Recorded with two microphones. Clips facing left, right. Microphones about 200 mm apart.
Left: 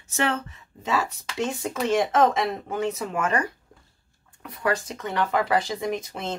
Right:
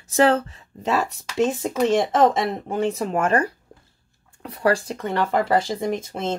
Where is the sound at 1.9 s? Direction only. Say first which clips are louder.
Even; 35° right (ahead or behind).